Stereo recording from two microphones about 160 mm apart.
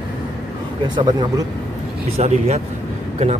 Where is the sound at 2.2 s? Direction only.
40° right (ahead or behind).